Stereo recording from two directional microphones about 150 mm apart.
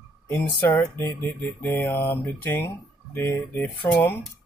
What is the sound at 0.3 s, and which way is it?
Speech, 15° left (ahead or behind).